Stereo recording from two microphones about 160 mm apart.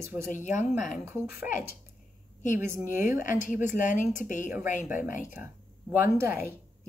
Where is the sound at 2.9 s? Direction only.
55° left (ahead or behind).